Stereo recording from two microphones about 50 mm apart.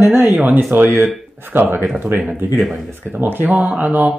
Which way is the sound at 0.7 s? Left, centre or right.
Right.